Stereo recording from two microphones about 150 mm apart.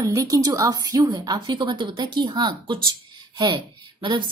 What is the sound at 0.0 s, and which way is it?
A woman's voice, 25° right (ahead or behind).